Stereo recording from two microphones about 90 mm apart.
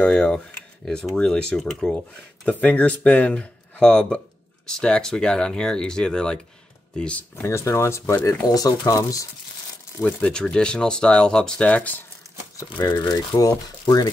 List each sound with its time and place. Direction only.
0.0 s speech: 10° left (ahead or behind)
2.4 s speech: 15° left (ahead or behind)
7.4 s speech: 30° left (ahead or behind)
8.5 s speech: 45° left (ahead or behind)
10.0 s speech: 10° left (ahead or behind)
13.1 s speech: 40° left (ahead or behind)